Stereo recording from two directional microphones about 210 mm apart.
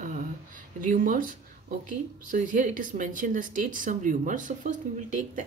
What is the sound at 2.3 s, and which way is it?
Speech, 40° right (ahead or behind).